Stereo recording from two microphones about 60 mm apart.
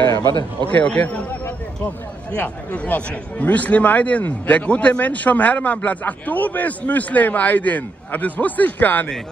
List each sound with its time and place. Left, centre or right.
0.7 s speech: left
2.3 s speech: left